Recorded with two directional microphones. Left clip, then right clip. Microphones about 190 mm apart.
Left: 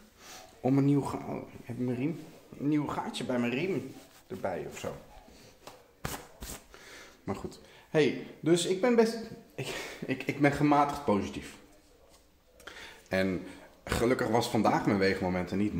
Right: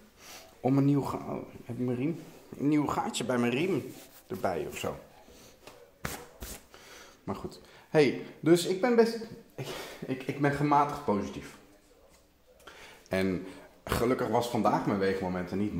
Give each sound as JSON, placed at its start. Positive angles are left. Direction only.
{"t": 0.2, "sound": "speech", "side_deg": 0}
{"t": 2.6, "sound": "speech", "side_deg": -40}
{"t": 7.2, "sound": "speech", "side_deg": -5}
{"t": 7.9, "sound": "speech", "side_deg": -20}
{"t": 13.1, "sound": "a sound", "side_deg": -10}
{"t": 14.0, "sound": "speech", "side_deg": 5}